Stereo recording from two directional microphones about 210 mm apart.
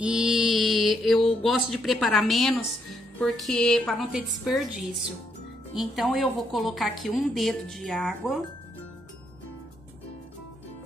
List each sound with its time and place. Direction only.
0.0 s mantra: 5° right (ahead or behind)
1.4 s a woman's voice: centre (ahead or behind)